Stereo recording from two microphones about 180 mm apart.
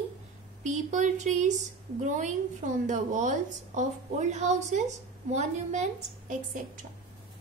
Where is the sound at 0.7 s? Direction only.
40° right (ahead or behind).